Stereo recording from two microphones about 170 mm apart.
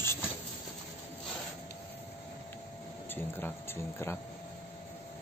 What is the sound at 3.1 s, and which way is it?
Speech, 10° left (ahead or behind).